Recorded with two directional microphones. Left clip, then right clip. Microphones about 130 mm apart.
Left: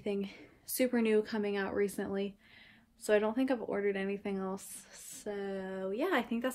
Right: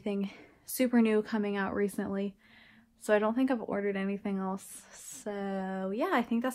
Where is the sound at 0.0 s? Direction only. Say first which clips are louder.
Right 1 dB; 40° right (ahead or behind).